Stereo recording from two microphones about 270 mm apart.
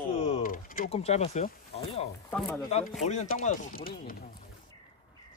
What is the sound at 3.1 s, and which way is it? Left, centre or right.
Speech, left.